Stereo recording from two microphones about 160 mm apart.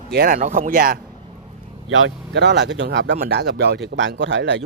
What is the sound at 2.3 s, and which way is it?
Speech, 90° right.